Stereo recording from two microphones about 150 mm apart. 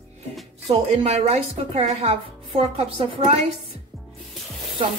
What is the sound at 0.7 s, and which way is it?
A woman's voice, 45° right (ahead or behind).